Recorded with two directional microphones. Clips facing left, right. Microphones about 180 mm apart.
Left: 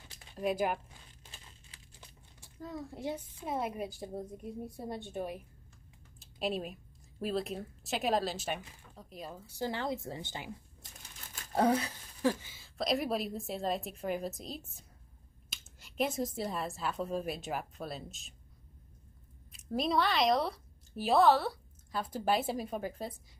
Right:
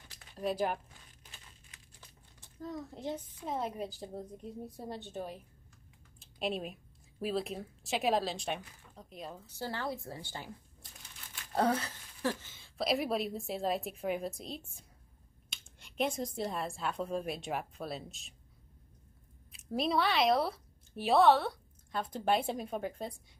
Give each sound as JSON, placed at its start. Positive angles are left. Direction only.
{"t": 0.4, "sound": "a child's voice", "side_deg": 10}
{"t": 2.0, "sound": "a child's voice", "side_deg": 10}
{"t": 9.6, "sound": "a child's voice", "side_deg": 15}
{"t": 11.0, "sound": "crumpling", "side_deg": 40}
{"t": 11.5, "sound": "speech", "side_deg": 15}
{"t": 19.5, "sound": "speech", "side_deg": 0}